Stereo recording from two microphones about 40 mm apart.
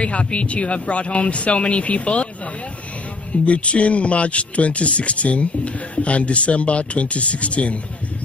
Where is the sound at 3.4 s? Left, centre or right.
Left.